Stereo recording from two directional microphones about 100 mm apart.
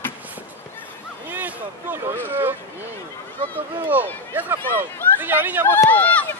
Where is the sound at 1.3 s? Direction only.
20° right (ahead or behind).